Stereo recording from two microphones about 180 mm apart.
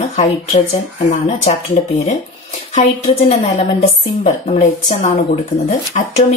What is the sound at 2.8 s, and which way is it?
A woman's voice, 40° left (ahead or behind).